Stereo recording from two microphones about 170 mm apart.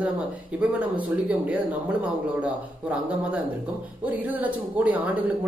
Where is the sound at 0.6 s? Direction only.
10° right (ahead or behind).